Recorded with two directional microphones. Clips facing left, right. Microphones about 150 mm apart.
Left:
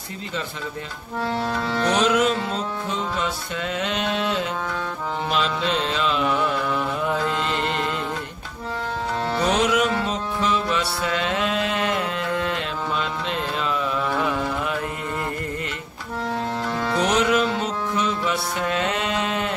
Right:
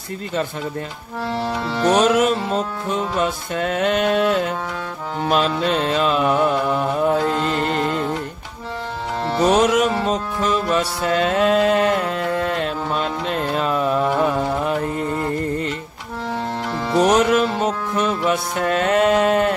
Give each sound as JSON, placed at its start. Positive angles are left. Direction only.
{"t": 1.9, "sound": "music", "side_deg": -45}
{"t": 5.3, "sound": "music", "side_deg": -45}
{"t": 9.6, "sound": "music", "side_deg": -45}
{"t": 14.4, "sound": "carnatic music", "side_deg": -35}
{"t": 17.0, "sound": "music", "side_deg": -45}